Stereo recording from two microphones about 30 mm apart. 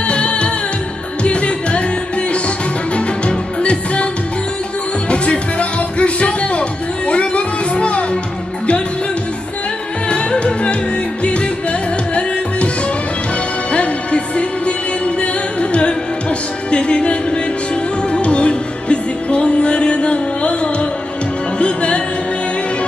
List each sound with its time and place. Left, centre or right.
0.1 s music: left
3.3 s music: left
5.1 s music: left
10.4 s music: left
13.7 s music: left
15.7 s music: left